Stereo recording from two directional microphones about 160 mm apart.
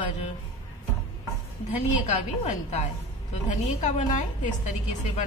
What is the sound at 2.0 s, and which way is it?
A woman's voice, 50° left (ahead or behind).